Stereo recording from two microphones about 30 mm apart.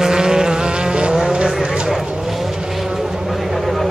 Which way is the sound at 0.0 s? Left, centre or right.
Right.